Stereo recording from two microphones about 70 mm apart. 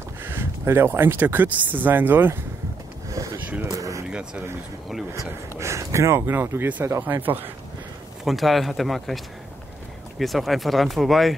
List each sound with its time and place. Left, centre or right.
0.2 s speech: right
3.7 s a sound: right
4.1 s speech: centre
5.6 s speech: right
8.3 s speech: centre